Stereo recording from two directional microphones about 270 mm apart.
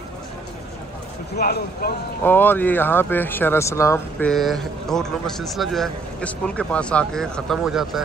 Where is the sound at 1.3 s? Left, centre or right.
Left.